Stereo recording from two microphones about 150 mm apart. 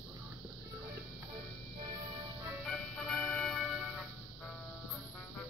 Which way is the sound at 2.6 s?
5° left (ahead or behind).